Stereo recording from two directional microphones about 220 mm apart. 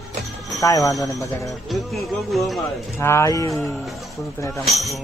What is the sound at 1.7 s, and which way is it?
Speech, centre (ahead or behind).